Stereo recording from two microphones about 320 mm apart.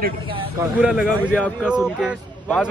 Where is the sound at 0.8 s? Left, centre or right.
Centre.